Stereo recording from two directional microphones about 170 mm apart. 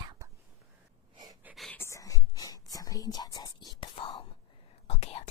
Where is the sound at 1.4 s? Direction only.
Centre (ahead or behind).